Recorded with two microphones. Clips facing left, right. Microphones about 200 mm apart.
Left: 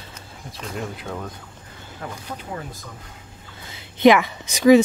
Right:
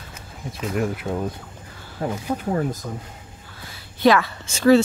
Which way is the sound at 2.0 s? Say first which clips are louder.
Right 8 dB; 30° right (ahead or behind).